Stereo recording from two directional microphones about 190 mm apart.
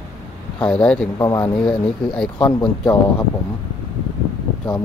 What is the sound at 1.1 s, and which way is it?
Speech, 20° left (ahead or behind).